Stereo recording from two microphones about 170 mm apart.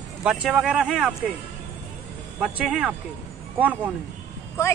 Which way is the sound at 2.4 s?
5° right (ahead or behind).